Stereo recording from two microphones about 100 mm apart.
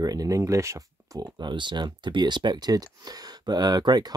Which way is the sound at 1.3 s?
50° right (ahead or behind).